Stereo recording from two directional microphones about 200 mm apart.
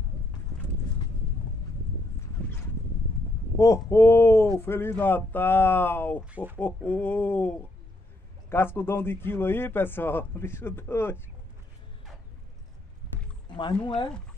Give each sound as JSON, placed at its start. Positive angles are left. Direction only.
{"t": 3.5, "sound": "speech", "side_deg": 15}
{"t": 6.3, "sound": "speech", "side_deg": -10}
{"t": 6.6, "sound": "speech", "side_deg": 10}
{"t": 13.5, "sound": "a sound", "side_deg": 25}